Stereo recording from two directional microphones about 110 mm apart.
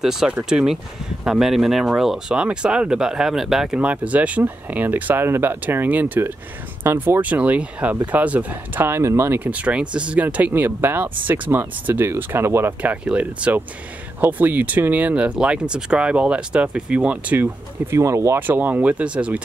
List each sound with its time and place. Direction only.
0.0 s speech: 5° right (ahead or behind); by 9.4 s 25° right (ahead or behind)
9.4 s speech: 10° right (ahead or behind)
12.9 s speech: 10° right (ahead or behind)
17.9 s speech: 30° right (ahead or behind); by 19.4 s 10° right (ahead or behind)